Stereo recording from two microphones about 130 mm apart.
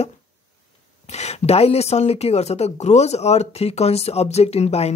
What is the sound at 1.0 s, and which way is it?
Speech, 60° left (ahead or behind).